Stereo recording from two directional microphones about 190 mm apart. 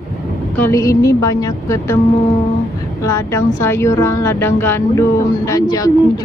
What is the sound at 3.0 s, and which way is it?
A woman's voice, 15° left (ahead or behind).